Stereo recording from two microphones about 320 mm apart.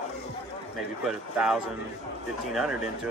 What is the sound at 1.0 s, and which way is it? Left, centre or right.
A man's voice, centre.